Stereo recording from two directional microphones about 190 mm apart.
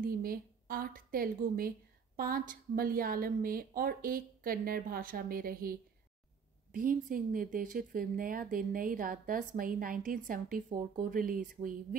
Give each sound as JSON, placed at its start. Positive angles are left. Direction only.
{"t": 0.0, "sound": "a woman's voice", "side_deg": -50}